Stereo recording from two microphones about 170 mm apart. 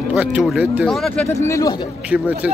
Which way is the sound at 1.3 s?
20° left (ahead or behind).